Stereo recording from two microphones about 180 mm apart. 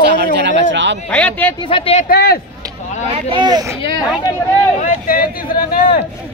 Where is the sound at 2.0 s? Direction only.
60° left (ahead or behind).